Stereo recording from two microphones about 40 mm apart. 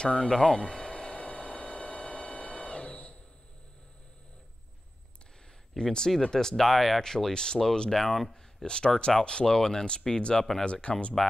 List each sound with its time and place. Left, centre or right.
0.2 s speech: centre
0.7 s a sound: centre
1.2 s a sound: left
5.8 s speech: centre
7.9 s speech: centre
8.6 s speech: left
10.6 s speech: left